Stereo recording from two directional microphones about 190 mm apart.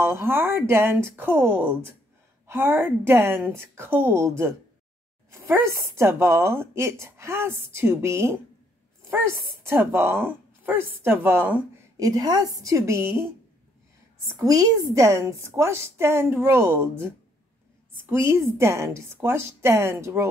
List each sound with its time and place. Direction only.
0.0 s a woman's voice: 15° right (ahead or behind)
14.4 s a woman's voice: 15° right (ahead or behind)